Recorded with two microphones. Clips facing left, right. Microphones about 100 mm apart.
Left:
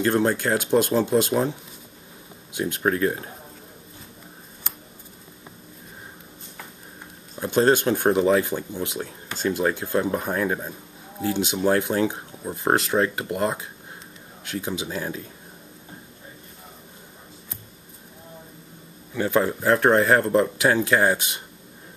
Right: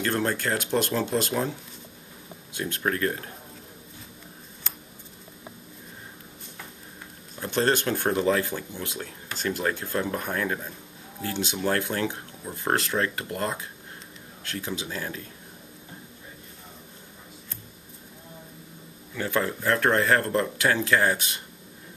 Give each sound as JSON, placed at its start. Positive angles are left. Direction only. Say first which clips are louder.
{"t": 0.0, "sound": "speech", "louder": "left 5 dB", "side_deg": 20}
{"t": 7.4, "sound": "speech", "louder": "left 5 dB", "side_deg": 15}
{"t": 19.1, "sound": "speech", "louder": "left 5 dB", "side_deg": 25}